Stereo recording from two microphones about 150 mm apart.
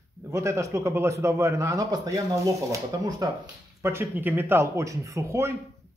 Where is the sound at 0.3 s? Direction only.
20° right (ahead or behind).